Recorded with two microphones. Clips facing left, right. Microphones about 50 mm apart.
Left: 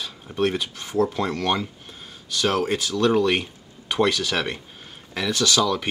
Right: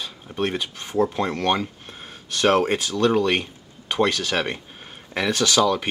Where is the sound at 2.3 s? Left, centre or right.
Right.